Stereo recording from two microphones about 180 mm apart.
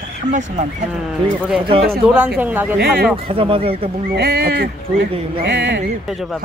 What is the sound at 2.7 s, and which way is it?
Speech, 60° right (ahead or behind).